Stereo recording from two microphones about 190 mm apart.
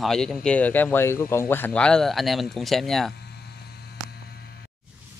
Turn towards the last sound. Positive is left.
turn(degrees=60)  # may be behind; listen again after turning